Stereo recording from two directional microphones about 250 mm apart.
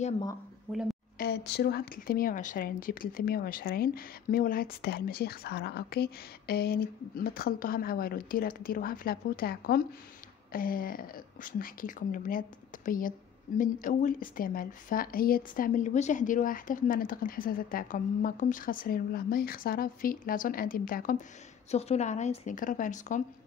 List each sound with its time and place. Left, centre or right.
0.0 s speech: centre
1.1 s a woman's voice: left